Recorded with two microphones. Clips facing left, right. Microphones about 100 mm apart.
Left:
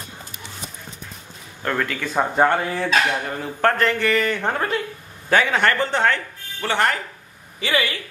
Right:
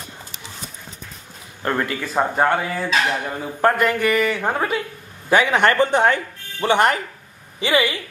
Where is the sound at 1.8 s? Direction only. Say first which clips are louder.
Right 1 dB; 5° right (ahead or behind).